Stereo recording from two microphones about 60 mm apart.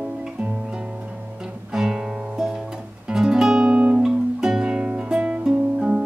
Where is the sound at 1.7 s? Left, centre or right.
Centre.